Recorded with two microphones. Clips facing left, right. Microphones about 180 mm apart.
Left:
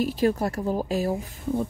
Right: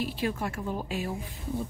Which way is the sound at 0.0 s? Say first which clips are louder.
Left 8 dB; 40° left (ahead or behind).